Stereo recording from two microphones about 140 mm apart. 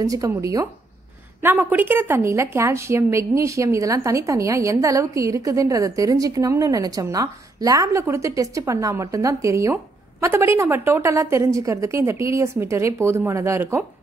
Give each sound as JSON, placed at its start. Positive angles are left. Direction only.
{"t": 0.0, "sound": "a woman's voice", "side_deg": -25}
{"t": 1.4, "sound": "a woman's voice", "side_deg": -10}